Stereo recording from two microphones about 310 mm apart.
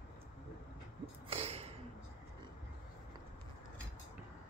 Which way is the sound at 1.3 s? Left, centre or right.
Centre.